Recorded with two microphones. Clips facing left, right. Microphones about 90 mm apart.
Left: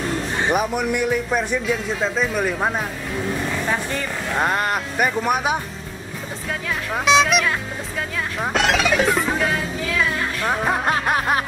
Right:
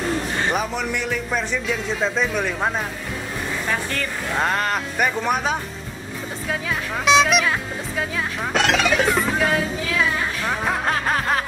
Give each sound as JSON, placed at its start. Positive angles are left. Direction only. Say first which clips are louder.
{"t": 0.4, "sound": "a man's voice", "louder": "left 3 dB", "side_deg": 10}
{"t": 3.6, "sound": "speech", "louder": "left 1 dB", "side_deg": 15}
{"t": 4.3, "sound": "a man's voice", "louder": "left 1 dB", "side_deg": 5}
{"t": 6.9, "sound": "a man's voice", "louder": "even", "side_deg": 0}
{"t": 9.9, "sound": "music", "louder": "even", "side_deg": 0}